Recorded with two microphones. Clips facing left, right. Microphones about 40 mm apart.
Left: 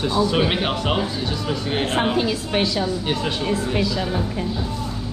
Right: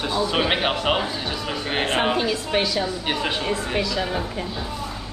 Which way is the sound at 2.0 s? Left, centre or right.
Centre.